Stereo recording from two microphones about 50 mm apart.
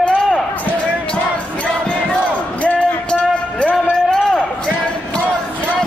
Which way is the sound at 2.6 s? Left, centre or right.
Left.